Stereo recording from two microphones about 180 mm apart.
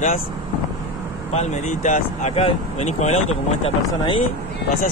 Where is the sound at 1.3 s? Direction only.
40° left (ahead or behind).